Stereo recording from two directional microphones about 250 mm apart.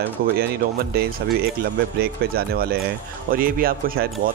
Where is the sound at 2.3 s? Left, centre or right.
Right.